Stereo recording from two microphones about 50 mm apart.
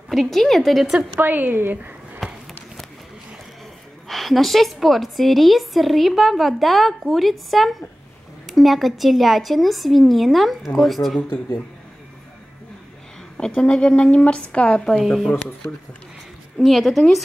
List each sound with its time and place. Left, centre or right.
0.1 s a woman's voice: centre
1.2 s a woman's voice: right
2.2 s walk: centre
4.1 s a woman's voice: centre
13.4 s speech: centre
15.0 s a woman's voice: centre
16.5 s a woman's voice: centre